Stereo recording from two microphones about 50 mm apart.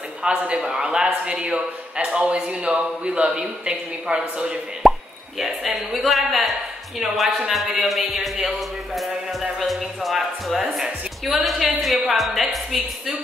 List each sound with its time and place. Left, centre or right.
0.2 s a man's voice: centre
4.8 s plop: centre
5.4 s a man's voice: centre